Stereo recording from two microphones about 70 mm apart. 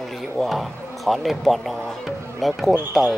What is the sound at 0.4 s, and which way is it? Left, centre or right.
Speech, centre.